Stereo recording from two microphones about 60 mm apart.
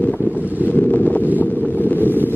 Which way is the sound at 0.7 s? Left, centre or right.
Left.